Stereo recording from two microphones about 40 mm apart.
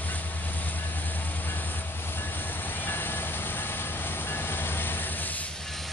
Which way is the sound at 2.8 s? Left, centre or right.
Left.